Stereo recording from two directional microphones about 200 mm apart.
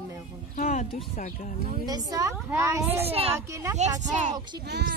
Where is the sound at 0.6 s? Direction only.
40° left (ahead or behind).